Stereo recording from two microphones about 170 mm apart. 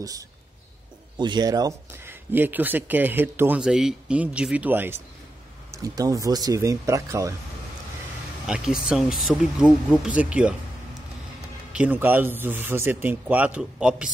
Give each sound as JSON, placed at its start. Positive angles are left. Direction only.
{"t": 1.1, "sound": "speech", "side_deg": -25}
{"t": 8.5, "sound": "speech", "side_deg": -5}
{"t": 11.7, "sound": "speech", "side_deg": -10}